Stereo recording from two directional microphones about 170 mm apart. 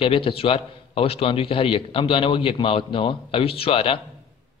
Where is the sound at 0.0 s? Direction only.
35° left (ahead or behind).